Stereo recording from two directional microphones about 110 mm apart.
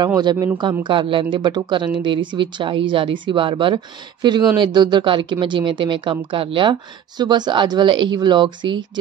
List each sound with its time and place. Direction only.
0.2 s speech: 40° right (ahead or behind)